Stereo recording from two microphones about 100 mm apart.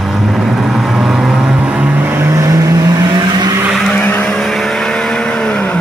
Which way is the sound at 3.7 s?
5° left (ahead or behind).